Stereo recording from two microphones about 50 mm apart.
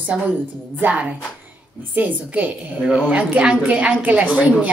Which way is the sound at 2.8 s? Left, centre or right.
Right.